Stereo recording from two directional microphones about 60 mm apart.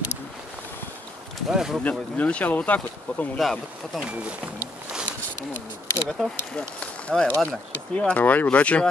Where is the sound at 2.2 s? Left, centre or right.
Left.